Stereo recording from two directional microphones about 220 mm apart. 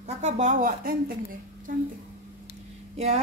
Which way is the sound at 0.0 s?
35° right (ahead or behind).